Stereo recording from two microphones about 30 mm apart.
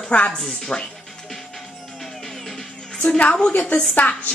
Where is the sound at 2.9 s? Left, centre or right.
Left.